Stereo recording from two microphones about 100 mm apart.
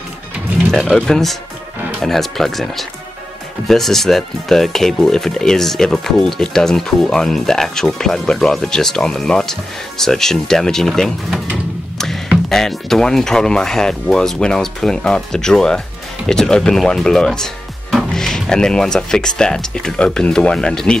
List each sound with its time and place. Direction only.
0.7 s speech: centre (ahead or behind)
12.4 s speech: 5° left (ahead or behind)